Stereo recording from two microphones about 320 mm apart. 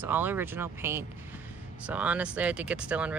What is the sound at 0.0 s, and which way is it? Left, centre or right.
Speech, centre.